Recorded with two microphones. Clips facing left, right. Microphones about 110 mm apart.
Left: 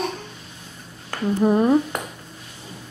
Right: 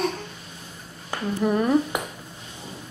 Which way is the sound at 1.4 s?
25° left (ahead or behind).